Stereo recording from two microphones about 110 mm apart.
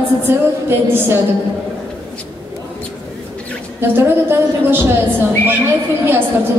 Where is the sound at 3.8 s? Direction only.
20° right (ahead or behind).